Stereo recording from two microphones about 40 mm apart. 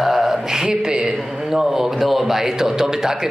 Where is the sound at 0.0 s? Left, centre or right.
Centre.